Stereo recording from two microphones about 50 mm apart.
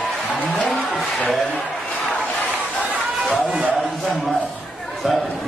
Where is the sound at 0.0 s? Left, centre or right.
Left.